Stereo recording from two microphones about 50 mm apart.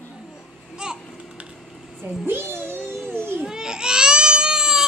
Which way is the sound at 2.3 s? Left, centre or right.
Right.